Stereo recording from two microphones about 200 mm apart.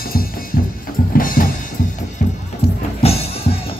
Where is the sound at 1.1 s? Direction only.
45° left (ahead or behind).